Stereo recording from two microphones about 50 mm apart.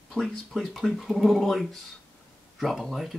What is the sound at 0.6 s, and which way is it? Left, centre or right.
Speech, centre.